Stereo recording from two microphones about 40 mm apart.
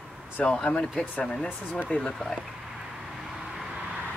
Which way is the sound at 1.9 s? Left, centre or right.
Left.